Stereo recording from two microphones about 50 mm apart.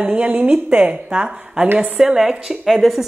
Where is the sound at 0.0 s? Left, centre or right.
Right.